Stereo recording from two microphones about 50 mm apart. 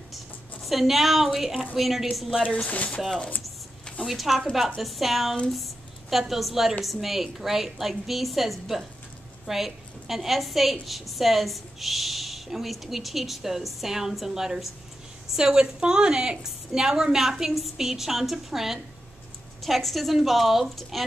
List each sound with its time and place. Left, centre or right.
0.7 s a woman's voice: centre
2.5 s speech: left
4.0 s a woman's voice: centre